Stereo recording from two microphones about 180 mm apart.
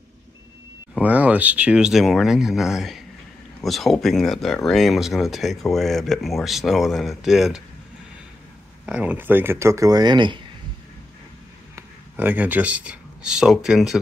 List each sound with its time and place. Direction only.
0.9 s speech: 10° right (ahead or behind)
8.8 s speech: 10° right (ahead or behind); by 10.4 s 25° right (ahead or behind)
11.7 s speech: 10° right (ahead or behind)